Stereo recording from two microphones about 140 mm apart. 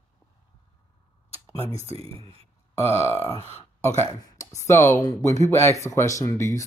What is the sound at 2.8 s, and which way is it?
Speech, 20° left (ahead or behind).